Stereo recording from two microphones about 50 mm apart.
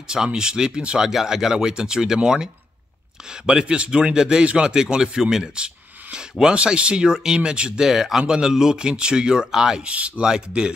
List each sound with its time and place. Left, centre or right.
0.1 s speech: centre
9.8 s speech: right
10.2 s speech: centre